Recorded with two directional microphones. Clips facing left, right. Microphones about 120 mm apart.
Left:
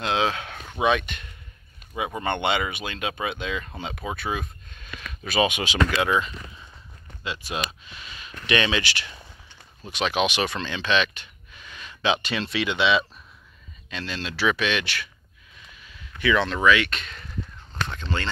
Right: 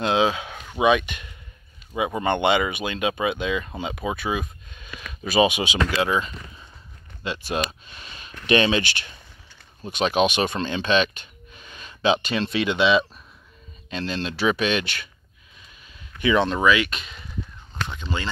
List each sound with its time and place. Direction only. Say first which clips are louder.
0.0 s a sound: right 4 dB; 15° right (ahead or behind)
2.0 s speech: right 4 dB; 20° right (ahead or behind)
7.5 s speech: right 6 dB; 40° right (ahead or behind)
11.5 s a sound: left 1 dB; 35° right (ahead or behind)
12.4 s speech: right 2 dB; 25° right (ahead or behind)
15.9 s speech: right 2 dB; 25° right (ahead or behind); by 18.3 s 5° right (ahead or behind)